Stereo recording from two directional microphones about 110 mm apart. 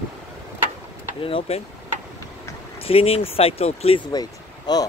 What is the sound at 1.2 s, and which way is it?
Speech, 55° left (ahead or behind).